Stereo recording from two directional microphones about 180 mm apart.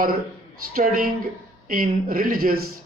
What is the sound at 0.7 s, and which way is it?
A man's voice, 50° right (ahead or behind).